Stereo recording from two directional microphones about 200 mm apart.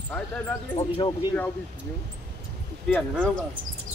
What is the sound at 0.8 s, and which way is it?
Speech, 25° left (ahead or behind).